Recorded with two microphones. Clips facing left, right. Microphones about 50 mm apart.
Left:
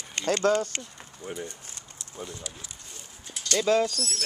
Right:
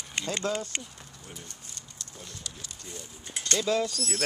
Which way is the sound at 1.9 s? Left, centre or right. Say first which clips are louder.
Left 8 dB; left.